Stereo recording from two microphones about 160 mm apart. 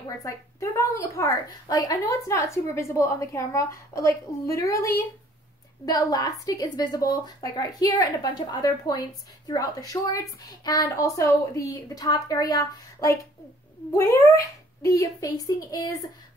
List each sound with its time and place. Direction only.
0.2 s a woman's voice: 20° left (ahead or behind)